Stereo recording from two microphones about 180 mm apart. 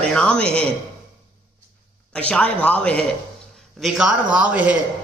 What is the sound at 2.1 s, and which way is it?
Speech, 5° left (ahead or behind).